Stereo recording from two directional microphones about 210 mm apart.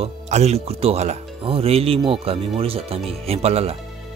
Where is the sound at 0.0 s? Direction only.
30° right (ahead or behind).